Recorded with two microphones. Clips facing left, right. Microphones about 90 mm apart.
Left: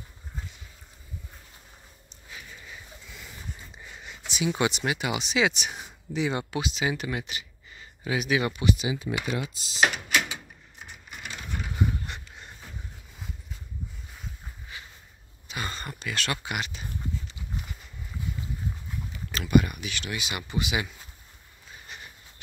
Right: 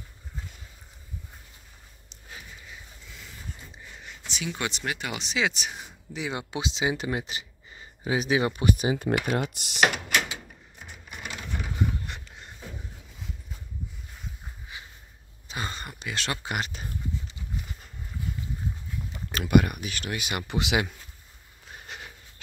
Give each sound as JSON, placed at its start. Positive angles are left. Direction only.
{"t": 4.0, "sound": "speech", "side_deg": 15}
{"t": 6.5, "sound": "speech", "side_deg": -25}
{"t": 8.5, "sound": "speech", "side_deg": -45}
{"t": 14.7, "sound": "a sound", "side_deg": -20}
{"t": 15.7, "sound": "a sound", "side_deg": -15}
{"t": 16.5, "sound": "speech", "side_deg": -40}
{"t": 19.3, "sound": "speech", "side_deg": -55}
{"t": 20.5, "sound": "speech", "side_deg": -75}
{"t": 21.6, "sound": "a sound", "side_deg": -70}